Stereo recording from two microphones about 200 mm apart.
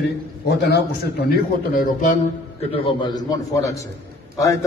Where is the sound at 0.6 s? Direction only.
55° left (ahead or behind).